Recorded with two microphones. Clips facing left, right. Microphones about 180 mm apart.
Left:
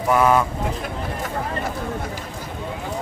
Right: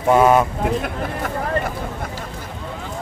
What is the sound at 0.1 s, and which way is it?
Speech, 25° right (ahead or behind).